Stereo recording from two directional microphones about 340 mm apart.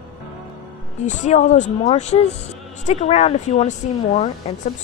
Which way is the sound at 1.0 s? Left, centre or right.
Left.